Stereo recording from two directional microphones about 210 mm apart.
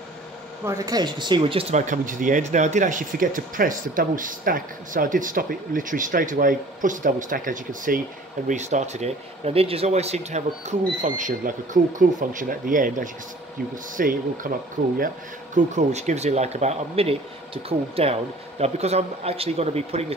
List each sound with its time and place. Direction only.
0.7 s speech: 15° right (ahead or behind); by 14.5 s 40° right (ahead or behind)
15.5 s speech: 35° right (ahead or behind)